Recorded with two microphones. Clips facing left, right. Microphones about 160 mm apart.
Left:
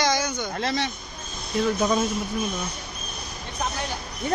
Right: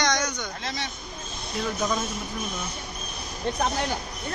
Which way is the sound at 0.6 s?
70° left (ahead or behind).